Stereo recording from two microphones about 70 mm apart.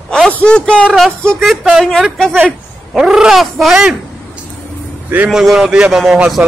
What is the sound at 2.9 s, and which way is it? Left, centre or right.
Speech, centre.